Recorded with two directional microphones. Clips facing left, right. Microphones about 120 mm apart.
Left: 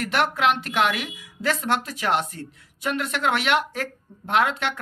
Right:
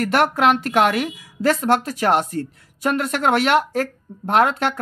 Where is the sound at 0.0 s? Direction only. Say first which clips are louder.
Right 5 dB; 45° right (ahead or behind).